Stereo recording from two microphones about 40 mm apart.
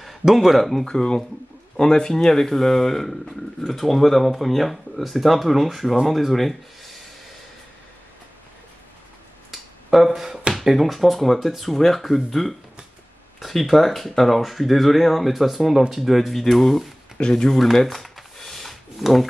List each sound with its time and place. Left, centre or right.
0.0 s speech: centre
0.8 s speech: centre
9.5 s a sound: centre
10.6 s speech: centre
17.2 s speech: centre
17.5 s a sound: centre